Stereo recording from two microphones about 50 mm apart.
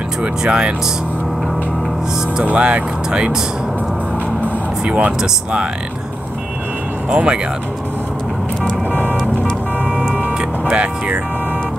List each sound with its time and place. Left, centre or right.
0.2 s speech: centre
2.4 s speech: right
4.8 s speech: right
7.1 s speech: centre
10.7 s speech: right